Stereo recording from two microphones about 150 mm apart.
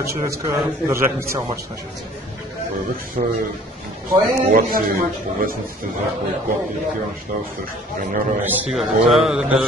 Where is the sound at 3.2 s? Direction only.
55° right (ahead or behind).